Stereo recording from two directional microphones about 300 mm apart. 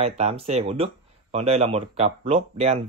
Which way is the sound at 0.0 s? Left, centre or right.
Centre.